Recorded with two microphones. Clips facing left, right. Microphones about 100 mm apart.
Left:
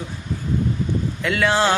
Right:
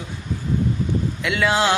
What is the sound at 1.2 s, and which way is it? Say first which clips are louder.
Speech: left 1 dB; 10° right (ahead or behind).